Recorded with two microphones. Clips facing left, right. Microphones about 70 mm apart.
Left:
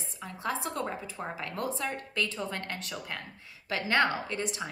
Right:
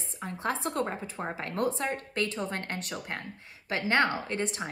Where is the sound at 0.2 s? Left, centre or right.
Right.